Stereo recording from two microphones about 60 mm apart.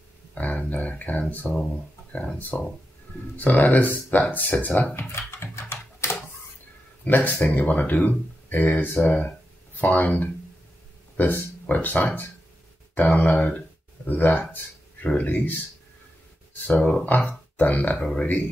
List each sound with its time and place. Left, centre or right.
0.3 s speech: left
1.5 s speech: centre
2.1 s speech: left
4.9 s typing: left
7.1 s speech: left
16.6 s speech: left